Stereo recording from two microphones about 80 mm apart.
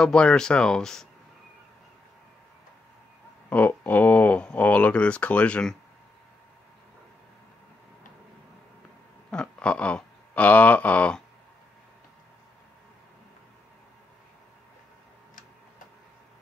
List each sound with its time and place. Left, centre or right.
0.0 s speech: centre
3.4 s speech: left
9.3 s a sound: centre